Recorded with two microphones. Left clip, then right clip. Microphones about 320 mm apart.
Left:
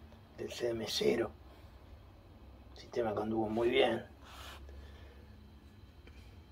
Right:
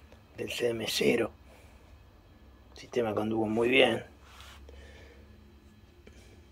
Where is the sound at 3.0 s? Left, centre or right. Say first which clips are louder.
Right 5 dB; right.